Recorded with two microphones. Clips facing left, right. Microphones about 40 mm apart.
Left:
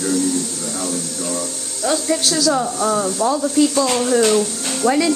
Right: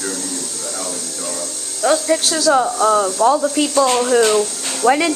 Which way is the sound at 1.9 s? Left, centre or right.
Centre.